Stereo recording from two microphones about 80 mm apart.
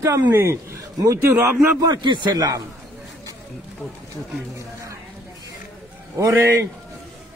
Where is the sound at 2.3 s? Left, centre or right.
Right.